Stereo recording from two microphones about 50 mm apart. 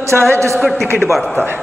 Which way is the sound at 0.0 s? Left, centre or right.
Right.